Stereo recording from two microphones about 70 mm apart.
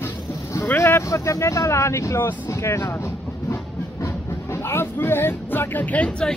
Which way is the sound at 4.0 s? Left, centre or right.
Left.